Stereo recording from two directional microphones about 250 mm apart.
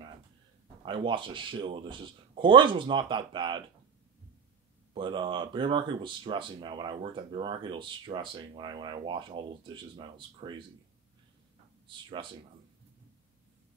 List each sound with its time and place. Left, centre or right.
0.8 s speech: centre
4.9 s speech: centre
11.9 s speech: centre